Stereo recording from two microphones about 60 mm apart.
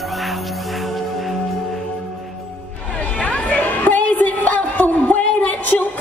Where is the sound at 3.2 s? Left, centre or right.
Left.